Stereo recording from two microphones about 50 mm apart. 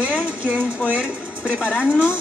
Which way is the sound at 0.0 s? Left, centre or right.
Right.